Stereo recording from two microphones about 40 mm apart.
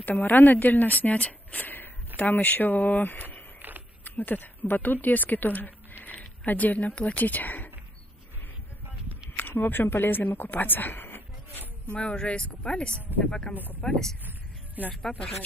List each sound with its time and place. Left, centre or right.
0.0 s a woman's voice: left
1.6 s a sound: left
2.1 s a woman's voice: left
9.4 s speech: left
11.9 s speech: left
13.8 s speech: left
14.8 s speech: right